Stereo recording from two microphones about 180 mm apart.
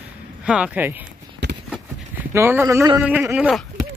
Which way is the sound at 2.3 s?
15° right (ahead or behind).